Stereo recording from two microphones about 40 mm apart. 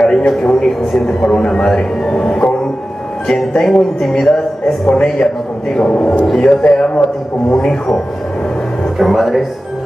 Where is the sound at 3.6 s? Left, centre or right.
Centre.